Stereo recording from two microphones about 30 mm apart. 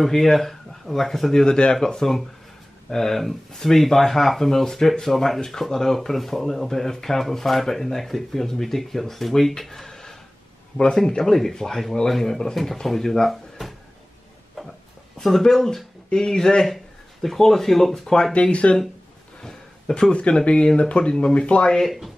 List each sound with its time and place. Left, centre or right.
0.0 s speech: centre
1.4 s speech: left; by 9.0 s centre
9.6 s a sound: centre
10.8 s speech: left
12.1 s speech: centre
13.3 s drawer open or close: centre
15.1 s speech: centre
17.2 s speech: centre
18.0 s speech: centre
18.3 s speech: left
20.1 s speech: left
21.8 s speech: centre